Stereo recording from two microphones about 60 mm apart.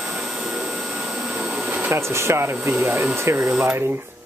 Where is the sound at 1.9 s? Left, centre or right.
Right.